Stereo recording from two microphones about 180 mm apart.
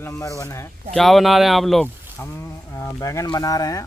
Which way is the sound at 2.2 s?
15° left (ahead or behind).